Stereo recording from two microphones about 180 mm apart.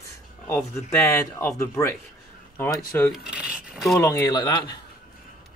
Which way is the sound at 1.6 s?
15° left (ahead or behind).